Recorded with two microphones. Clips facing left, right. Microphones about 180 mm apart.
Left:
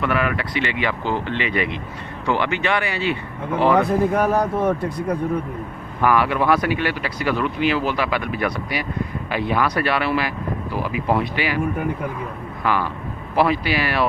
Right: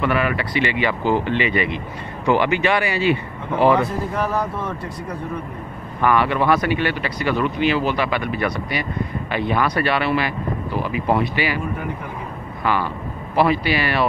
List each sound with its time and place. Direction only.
0.0 s speech: centre (ahead or behind)
1.5 s speech: centre (ahead or behind)
2.2 s speech: 10° right (ahead or behind)
4.1 s speech: 50° left (ahead or behind)
5.9 s speech: 5° left (ahead or behind)
12.6 s speech: centre (ahead or behind)